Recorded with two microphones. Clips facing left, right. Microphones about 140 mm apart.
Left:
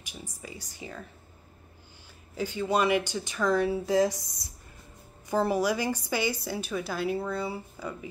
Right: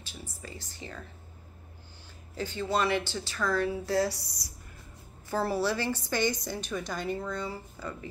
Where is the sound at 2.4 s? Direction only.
10° left (ahead or behind).